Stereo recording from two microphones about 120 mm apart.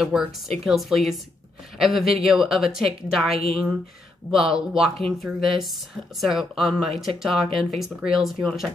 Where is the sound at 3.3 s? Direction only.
50° right (ahead or behind).